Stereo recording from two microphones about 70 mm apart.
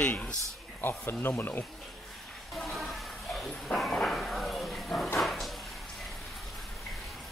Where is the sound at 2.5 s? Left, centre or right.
Centre.